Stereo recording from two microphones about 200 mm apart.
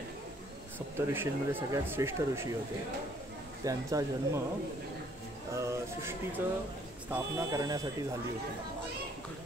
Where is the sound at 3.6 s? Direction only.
15° right (ahead or behind).